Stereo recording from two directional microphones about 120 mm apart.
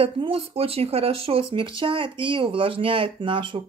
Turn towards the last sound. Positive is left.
turn(degrees=-45)  # may be behind; listen again after turning